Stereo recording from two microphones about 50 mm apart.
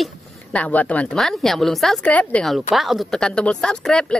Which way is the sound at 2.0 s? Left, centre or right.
Left.